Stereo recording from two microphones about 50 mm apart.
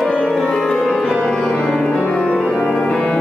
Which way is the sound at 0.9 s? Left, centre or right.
Centre.